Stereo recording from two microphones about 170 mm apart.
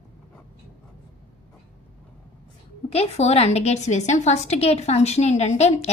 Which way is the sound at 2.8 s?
40° left (ahead or behind).